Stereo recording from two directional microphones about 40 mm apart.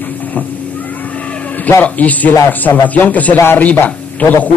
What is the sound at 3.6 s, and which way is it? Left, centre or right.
Speech, left.